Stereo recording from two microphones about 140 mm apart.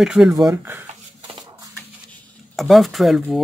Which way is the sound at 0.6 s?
15° right (ahead or behind).